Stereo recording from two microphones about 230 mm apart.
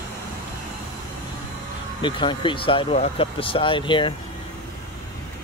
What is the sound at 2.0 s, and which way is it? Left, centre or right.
Speech, left.